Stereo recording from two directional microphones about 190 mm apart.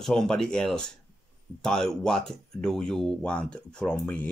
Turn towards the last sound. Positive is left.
turn(degrees=5)  # may be behind; listen again after turning